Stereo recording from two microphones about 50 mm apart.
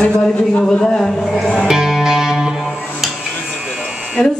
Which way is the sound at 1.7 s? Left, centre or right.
Centre.